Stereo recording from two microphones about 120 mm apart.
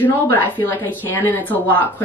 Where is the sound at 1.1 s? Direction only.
15° left (ahead or behind).